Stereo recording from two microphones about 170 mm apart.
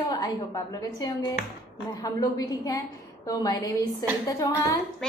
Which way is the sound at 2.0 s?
20° left (ahead or behind).